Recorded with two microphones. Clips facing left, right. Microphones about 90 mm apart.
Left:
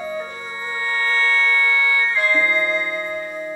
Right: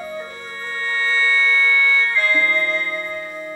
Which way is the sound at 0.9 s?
10° left (ahead or behind).